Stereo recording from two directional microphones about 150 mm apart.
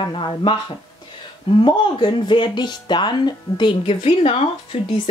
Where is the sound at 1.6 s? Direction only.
30° left (ahead or behind).